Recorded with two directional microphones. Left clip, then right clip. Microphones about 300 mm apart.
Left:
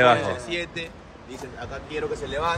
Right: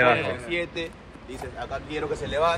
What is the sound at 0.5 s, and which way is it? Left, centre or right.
Speech, centre.